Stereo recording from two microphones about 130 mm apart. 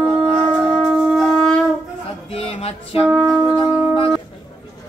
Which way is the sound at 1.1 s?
5° left (ahead or behind).